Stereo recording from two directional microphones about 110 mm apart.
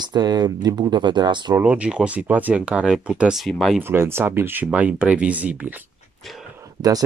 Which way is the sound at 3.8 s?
20° right (ahead or behind).